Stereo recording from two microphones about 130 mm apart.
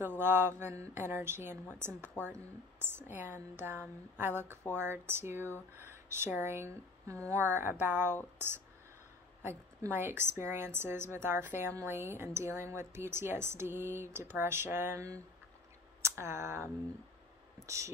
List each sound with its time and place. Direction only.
0.2 s a woman's voice: 20° right (ahead or behind)